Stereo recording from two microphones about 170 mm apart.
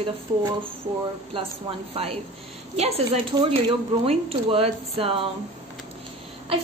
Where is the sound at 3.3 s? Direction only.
30° right (ahead or behind).